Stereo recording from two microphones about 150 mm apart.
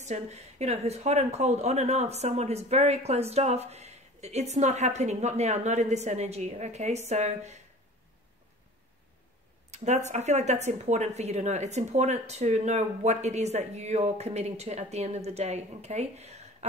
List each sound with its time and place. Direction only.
0.0 s speech: 50° right (ahead or behind)
9.7 s speech: 50° right (ahead or behind)